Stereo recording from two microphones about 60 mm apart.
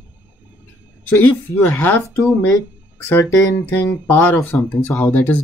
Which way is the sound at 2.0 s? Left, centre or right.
Left.